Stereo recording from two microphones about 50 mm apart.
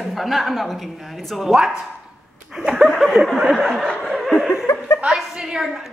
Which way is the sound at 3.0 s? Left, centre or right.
Centre.